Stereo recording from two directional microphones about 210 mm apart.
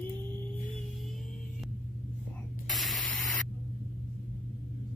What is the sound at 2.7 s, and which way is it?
Spray, centre (ahead or behind).